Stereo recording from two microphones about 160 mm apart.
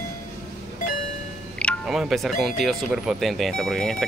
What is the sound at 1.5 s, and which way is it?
Speech, 5° left (ahead or behind).